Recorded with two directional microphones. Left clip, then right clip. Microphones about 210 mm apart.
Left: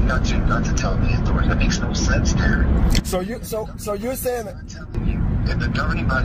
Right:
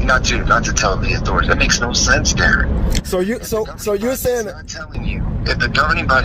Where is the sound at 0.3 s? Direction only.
50° right (ahead or behind).